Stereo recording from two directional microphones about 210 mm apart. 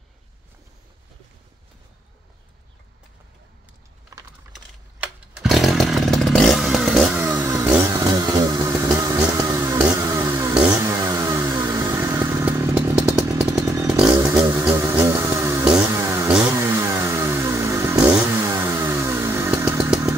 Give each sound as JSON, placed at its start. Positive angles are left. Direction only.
{"t": 5.0, "sound": "chainsaw", "side_deg": -5}
{"t": 7.2, "sound": "chainsaw", "side_deg": -15}
{"t": 9.2, "sound": "vehicle", "side_deg": -15}
{"t": 9.8, "sound": "a sound", "side_deg": -15}
{"t": 10.8, "sound": "vehicle", "side_deg": -15}
{"t": 13.4, "sound": "chainsaw", "side_deg": -15}
{"t": 13.8, "sound": "chainsaw", "side_deg": -5}
{"t": 14.2, "sound": "chainsaw", "side_deg": -15}